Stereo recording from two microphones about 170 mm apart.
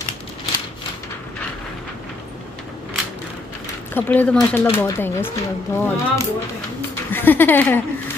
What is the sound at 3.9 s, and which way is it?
Speech, 10° left (ahead or behind).